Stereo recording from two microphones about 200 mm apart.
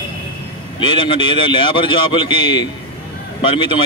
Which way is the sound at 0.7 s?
25° left (ahead or behind).